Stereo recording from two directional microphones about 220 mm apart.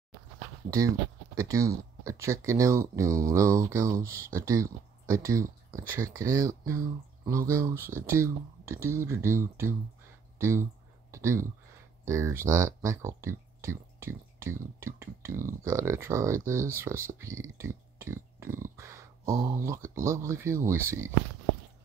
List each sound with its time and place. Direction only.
0.7 s speech: 15° right (ahead or behind)
18.4 s dog: 10° right (ahead or behind)
19.3 s speech: 15° right (ahead or behind)